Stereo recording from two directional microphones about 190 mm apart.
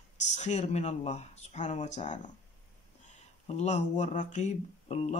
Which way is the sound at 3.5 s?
35° left (ahead or behind).